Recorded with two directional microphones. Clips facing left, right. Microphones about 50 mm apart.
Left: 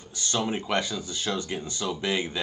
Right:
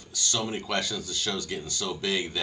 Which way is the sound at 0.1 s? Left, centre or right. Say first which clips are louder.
Left 2 dB; left.